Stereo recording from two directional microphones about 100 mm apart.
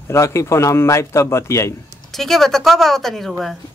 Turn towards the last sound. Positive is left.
turn(degrees=5)  # may be behind; listen again after turning